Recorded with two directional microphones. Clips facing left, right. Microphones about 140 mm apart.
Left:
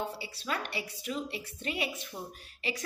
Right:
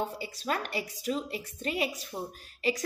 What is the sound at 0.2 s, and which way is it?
A woman's voice, 40° right (ahead or behind).